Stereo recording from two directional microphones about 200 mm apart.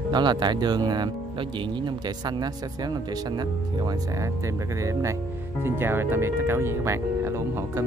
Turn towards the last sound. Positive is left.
turn(degrees=-15)  # may be behind; listen again after turning